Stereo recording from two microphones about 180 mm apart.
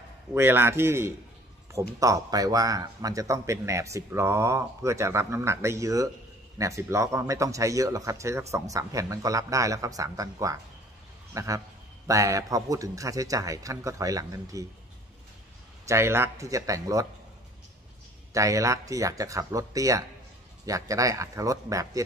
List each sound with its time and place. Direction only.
0.3 s a man's voice: 15° right (ahead or behind)
15.9 s a man's voice: 15° right (ahead or behind)
18.3 s a man's voice: 15° right (ahead or behind)